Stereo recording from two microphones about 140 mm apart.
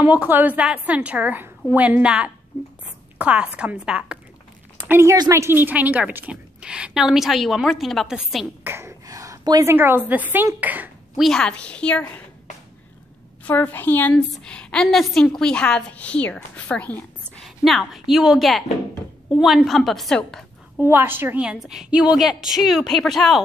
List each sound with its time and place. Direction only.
0.0 s a woman's voice: 15° right (ahead or behind)
8.6 s a woman's voice: 20° right (ahead or behind)
11.2 s a woman's voice: 5° left (ahead or behind)
13.4 s a woman's voice: 10° left (ahead or behind)
20.8 s a woman's voice: 15° right (ahead or behind); by 23.4 s centre (ahead or behind)